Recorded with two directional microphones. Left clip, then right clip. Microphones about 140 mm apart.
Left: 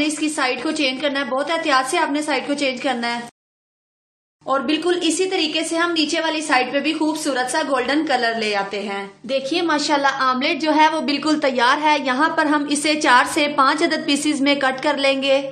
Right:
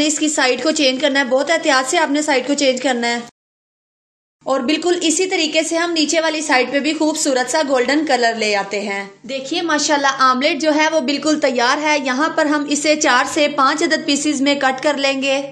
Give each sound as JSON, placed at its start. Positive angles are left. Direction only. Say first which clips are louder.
{"t": 0.0, "sound": "speech", "louder": "right 4 dB", "side_deg": -35}
{"t": 4.5, "sound": "speech", "louder": "right 2 dB", "side_deg": -35}
{"t": 9.3, "sound": "a woman's voice", "louder": "left 2 dB", "side_deg": -5}
{"t": 9.7, "sound": "a woman's voice", "louder": "right 4 dB", "side_deg": -20}